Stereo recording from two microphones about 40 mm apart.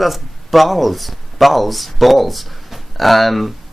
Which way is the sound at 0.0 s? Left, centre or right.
Centre.